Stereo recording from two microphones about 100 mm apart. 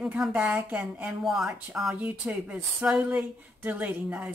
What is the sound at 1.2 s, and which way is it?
Speech, centre (ahead or behind).